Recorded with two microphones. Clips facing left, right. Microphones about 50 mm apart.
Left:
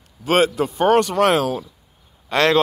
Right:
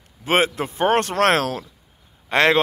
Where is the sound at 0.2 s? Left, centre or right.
Right.